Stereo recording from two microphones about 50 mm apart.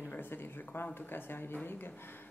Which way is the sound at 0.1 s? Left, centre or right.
Left.